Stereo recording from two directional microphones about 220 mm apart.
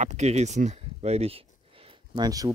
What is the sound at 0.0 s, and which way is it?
Speech, 30° right (ahead or behind).